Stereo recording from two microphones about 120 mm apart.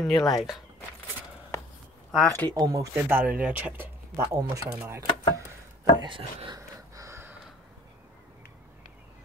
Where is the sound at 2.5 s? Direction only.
30° right (ahead or behind).